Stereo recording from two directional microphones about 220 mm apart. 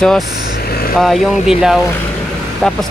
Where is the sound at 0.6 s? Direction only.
45° left (ahead or behind).